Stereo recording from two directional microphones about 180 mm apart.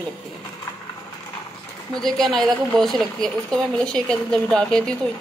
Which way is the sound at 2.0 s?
Centre (ahead or behind).